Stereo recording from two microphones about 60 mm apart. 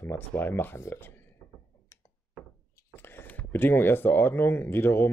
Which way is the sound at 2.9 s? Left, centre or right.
Left.